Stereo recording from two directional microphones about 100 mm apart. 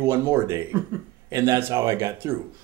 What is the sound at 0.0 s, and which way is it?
Speech, 25° right (ahead or behind).